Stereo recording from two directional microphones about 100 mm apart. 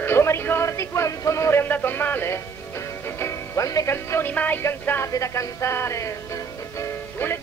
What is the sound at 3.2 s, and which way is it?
Speech, 30° left (ahead or behind).